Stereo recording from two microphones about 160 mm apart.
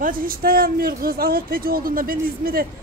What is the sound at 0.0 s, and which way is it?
Speech, 60° right (ahead or behind).